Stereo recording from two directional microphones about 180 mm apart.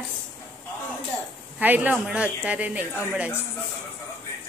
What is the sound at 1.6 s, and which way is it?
A woman's voice, 10° right (ahead or behind).